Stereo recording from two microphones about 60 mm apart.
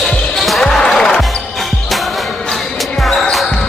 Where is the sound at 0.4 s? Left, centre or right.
Centre.